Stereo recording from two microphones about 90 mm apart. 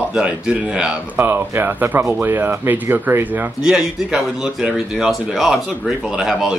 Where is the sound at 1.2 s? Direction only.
25° right (ahead or behind).